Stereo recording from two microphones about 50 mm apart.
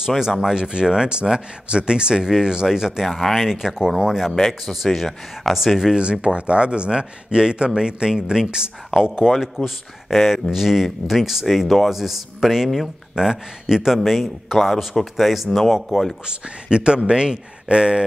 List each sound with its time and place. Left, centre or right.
0.2 s speech: centre
3.1 s a man's voice: centre
3.4 s speech: centre
4.3 s a man's voice: centre
6.2 s a man's voice: right; by 12.9 s centre
13.1 s a man's voice: centre
16.3 s speech: centre